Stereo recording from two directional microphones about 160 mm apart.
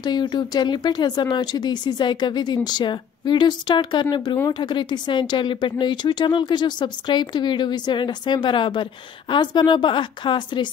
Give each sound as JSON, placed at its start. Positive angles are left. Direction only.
{"t": 0.0, "sound": "speech", "side_deg": 25}